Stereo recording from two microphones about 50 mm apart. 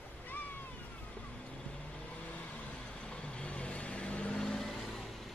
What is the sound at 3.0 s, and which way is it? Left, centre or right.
Vehicle, centre.